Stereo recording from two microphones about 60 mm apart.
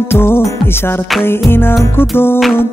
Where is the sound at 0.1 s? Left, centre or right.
Left.